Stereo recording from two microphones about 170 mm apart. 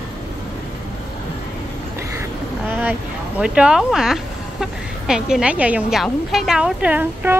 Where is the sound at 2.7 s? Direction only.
10° right (ahead or behind).